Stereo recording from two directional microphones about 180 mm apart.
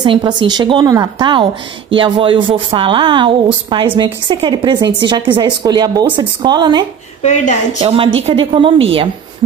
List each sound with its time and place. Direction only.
0.0 s a woman's voice: 25° right (ahead or behind)
7.2 s speech: 40° left (ahead or behind)
7.8 s a woman's voice: 30° right (ahead or behind)